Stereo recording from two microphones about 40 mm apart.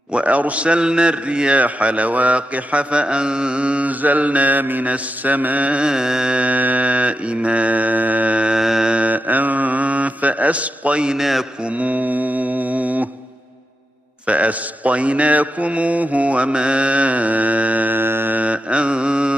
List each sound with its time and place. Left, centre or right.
0.1 s a man's voice: right
4.0 s mantra: right
4.8 s a man's voice: right
5.9 s carnatic music: centre
6.4 s a man's voice: right
8.5 s mantra: centre
8.9 s mantra: right
11.1 s a man's voice: centre
11.6 s mantra: right
14.2 s a man's voice: right
17.9 s mantra: right
18.3 s mantra: right